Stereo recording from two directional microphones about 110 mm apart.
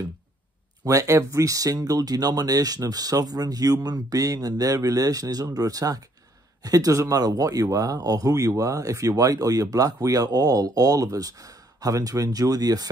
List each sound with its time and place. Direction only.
0.8 s speech: 30° right (ahead or behind)